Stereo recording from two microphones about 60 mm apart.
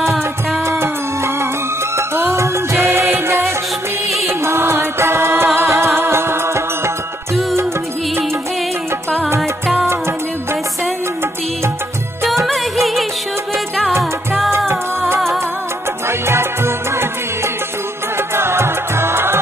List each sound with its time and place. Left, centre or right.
0.7 s music: right
16.1 s music: right
18.3 s music: right